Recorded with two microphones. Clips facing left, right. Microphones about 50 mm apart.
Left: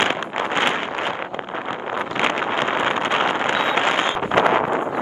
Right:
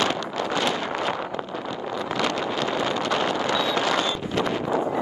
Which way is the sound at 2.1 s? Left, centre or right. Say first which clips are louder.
Left 5 dB; left.